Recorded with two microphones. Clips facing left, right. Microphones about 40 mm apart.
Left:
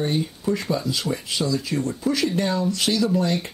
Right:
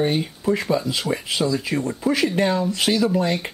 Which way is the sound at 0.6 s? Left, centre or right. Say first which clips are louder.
Right 3 dB; centre.